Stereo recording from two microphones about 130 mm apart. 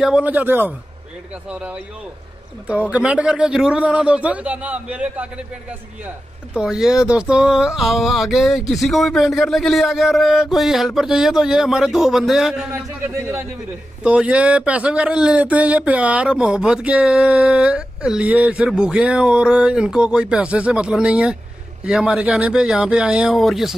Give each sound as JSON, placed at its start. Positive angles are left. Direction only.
{"t": 0.0, "sound": "a man's voice", "side_deg": -10}
{"t": 12.7, "sound": "a man's voice", "side_deg": -20}
{"t": 14.0, "sound": "speech", "side_deg": -5}